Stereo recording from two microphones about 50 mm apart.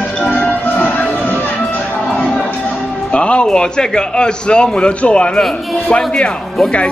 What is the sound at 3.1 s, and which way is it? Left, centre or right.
A man's voice, left.